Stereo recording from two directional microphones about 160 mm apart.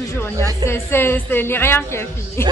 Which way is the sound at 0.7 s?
15° left (ahead or behind).